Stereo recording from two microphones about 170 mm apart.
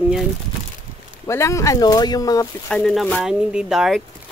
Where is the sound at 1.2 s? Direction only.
15° left (ahead or behind).